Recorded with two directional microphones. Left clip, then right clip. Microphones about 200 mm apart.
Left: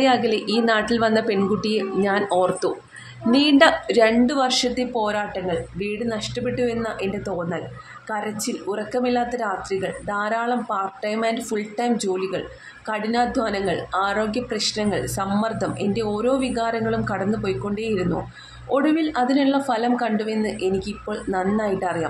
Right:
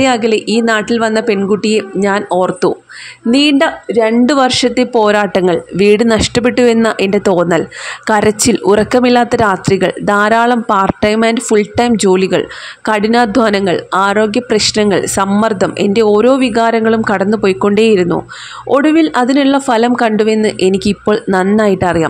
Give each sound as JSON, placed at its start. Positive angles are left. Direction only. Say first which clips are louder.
{"t": 0.0, "sound": "speech", "louder": "right 8 dB", "side_deg": -30}